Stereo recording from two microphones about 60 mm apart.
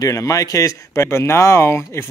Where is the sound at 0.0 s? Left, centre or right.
Left.